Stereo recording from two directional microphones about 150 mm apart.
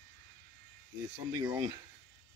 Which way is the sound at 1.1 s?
20° right (ahead or behind).